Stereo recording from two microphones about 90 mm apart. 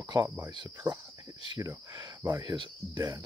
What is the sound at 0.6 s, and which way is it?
Speech, 45° right (ahead or behind).